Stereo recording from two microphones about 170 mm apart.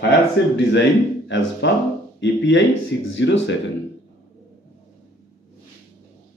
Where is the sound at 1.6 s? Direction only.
90° left.